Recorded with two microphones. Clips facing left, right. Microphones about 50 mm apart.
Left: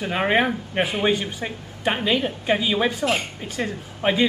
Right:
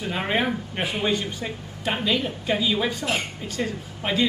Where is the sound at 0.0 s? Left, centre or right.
Left.